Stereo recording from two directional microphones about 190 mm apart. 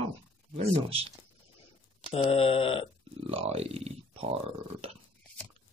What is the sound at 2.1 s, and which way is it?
Speech, 30° left (ahead or behind).